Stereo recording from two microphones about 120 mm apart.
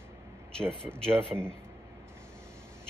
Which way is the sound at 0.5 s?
5° left (ahead or behind).